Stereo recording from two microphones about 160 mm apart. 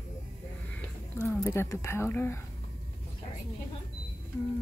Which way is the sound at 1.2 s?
15° left (ahead or behind).